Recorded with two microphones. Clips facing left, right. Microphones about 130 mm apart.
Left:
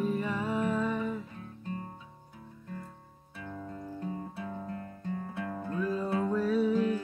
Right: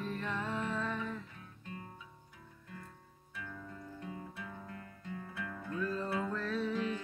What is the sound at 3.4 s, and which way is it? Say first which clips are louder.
Music: left 6 dB; 35° left (ahead or behind).